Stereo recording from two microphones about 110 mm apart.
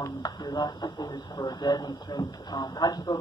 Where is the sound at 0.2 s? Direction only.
35° left (ahead or behind).